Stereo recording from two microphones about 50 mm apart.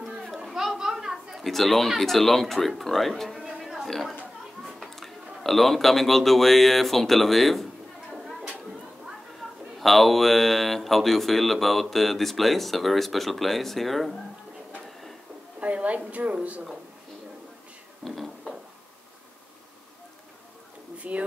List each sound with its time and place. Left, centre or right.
0.4 s chatter: centre
0.7 s speech: centre
3.4 s chatter: centre
4.6 s speech: centre
8.1 s a sound: centre
9.4 s a man's voice: centre
15.6 s a woman's voice: right
18.0 s a sound: centre
21.0 s a woman's voice: right